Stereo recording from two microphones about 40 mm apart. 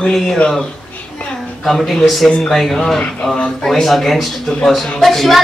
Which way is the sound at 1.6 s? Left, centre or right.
Centre.